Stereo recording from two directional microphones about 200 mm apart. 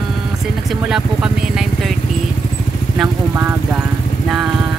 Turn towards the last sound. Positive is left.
turn(degrees=-10)  # may be behind; listen again after turning